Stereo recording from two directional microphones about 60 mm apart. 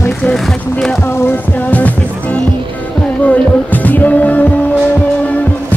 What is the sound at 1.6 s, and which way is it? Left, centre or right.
Music, left.